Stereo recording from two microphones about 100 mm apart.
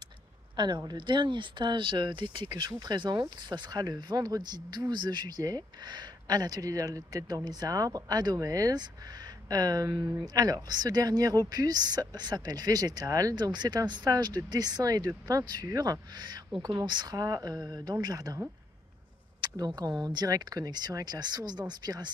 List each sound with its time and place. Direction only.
0.6 s speech: 50° right (ahead or behind)
16.5 s speech: 55° right (ahead or behind)
16.8 s speech: 45° right (ahead or behind)
19.4 s speech: 40° right (ahead or behind)